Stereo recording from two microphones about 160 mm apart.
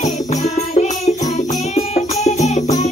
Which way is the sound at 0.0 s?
45° left (ahead or behind).